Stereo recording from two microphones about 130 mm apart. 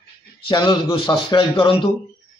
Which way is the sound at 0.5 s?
35° left (ahead or behind).